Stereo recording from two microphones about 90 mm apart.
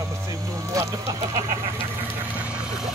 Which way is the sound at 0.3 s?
40° right (ahead or behind).